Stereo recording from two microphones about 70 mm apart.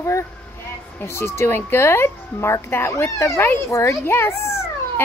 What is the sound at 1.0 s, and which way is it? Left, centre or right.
A woman's voice, left.